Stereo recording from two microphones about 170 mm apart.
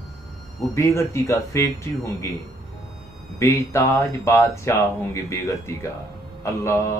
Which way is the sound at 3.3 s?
15° left (ahead or behind).